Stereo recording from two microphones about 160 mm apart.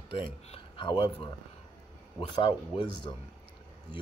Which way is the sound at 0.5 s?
35° left (ahead or behind).